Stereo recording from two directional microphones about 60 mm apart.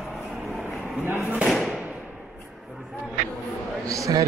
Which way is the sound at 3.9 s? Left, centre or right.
Right.